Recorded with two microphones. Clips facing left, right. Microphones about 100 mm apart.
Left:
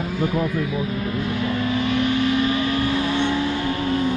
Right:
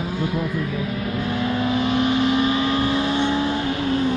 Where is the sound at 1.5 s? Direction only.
30° right (ahead or behind).